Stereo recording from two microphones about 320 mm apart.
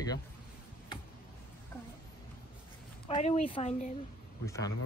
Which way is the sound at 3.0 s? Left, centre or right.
Centre.